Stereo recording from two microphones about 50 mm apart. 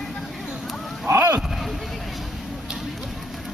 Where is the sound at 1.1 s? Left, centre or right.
Right.